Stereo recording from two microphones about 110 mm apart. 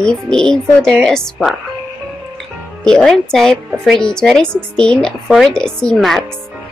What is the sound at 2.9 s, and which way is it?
A woman's voice, 5° left (ahead or behind).